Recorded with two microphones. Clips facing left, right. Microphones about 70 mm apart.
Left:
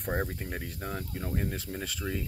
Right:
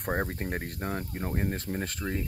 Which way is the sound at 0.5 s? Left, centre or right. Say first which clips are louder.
Right 4 dB; right.